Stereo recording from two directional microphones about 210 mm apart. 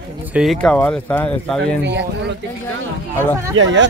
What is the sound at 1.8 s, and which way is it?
Speech, 55° right (ahead or behind).